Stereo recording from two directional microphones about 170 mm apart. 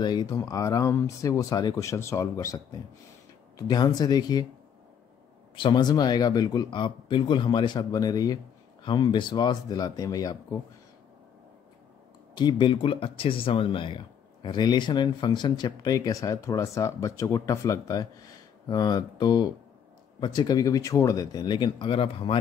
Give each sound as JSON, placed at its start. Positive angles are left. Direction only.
{"t": 0.0, "sound": "speech", "side_deg": 25}
{"t": 5.6, "sound": "speech", "side_deg": 25}
{"t": 12.4, "sound": "speech", "side_deg": 25}